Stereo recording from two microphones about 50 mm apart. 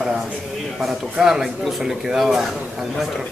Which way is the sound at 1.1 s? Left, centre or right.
Centre.